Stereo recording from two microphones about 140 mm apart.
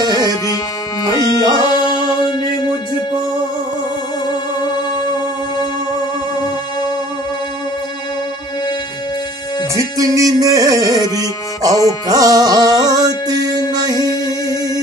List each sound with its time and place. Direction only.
0.0 s music: 30° right (ahead or behind)
1.2 s music: 30° left (ahead or behind)
9.8 s music: 25° right (ahead or behind)